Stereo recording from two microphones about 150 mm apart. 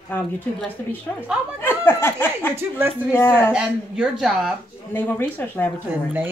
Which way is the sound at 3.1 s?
15° left (ahead or behind).